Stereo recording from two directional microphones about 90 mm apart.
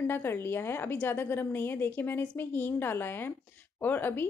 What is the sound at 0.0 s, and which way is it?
A woman's voice, 25° left (ahead or behind).